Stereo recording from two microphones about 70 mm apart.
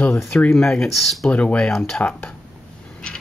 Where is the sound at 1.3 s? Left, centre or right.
Centre.